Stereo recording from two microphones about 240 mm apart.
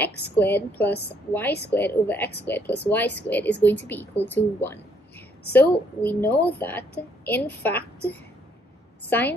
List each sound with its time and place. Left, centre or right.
0.0 s speech: centre